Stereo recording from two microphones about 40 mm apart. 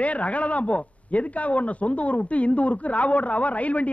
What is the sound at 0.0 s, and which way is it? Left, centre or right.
A man's voice, left.